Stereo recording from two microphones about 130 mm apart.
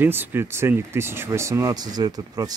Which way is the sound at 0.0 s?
15° right (ahead or behind).